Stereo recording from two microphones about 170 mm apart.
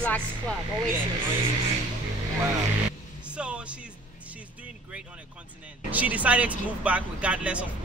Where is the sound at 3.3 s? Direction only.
5° right (ahead or behind).